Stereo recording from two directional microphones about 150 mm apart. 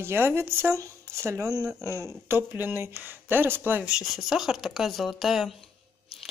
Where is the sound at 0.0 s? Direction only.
15° right (ahead or behind).